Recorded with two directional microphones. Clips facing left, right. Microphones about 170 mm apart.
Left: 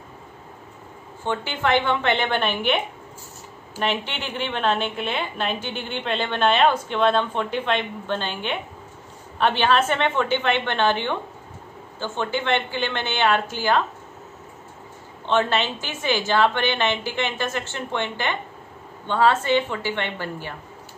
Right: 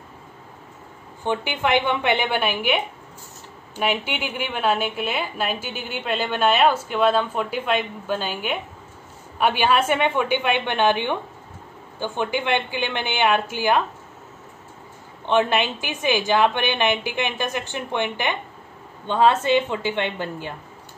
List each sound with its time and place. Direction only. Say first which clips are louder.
1.2 s a woman's voice: right 1 dB; 15° right (ahead or behind)
3.8 s a woman's voice: right 2 dB; 10° right (ahead or behind)
15.2 s a woman's voice: right 2 dB; 15° right (ahead or behind)